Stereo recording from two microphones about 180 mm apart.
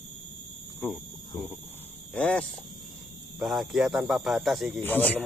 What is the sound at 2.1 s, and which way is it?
Speech, 5° left (ahead or behind).